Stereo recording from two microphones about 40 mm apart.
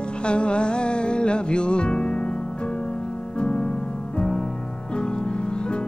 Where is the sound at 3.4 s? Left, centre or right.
Left.